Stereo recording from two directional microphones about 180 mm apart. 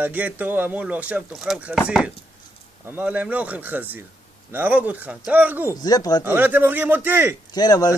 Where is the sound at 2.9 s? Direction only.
10° right (ahead or behind).